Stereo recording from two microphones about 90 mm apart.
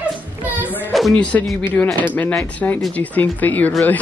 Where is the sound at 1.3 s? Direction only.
20° left (ahead or behind).